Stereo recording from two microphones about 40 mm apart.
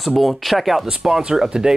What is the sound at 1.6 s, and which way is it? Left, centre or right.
Speech, centre.